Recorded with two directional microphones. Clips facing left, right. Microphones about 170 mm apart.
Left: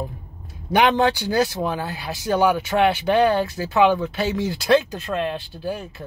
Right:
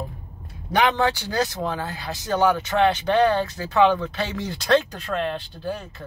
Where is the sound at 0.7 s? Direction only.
15° left (ahead or behind).